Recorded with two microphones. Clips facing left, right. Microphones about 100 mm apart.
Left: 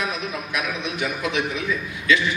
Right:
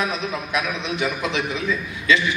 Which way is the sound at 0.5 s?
25° right (ahead or behind).